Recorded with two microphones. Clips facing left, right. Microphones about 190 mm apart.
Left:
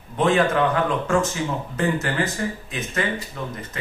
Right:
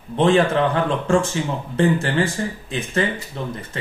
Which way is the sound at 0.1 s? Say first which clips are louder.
Right 3 dB; 30° right (ahead or behind).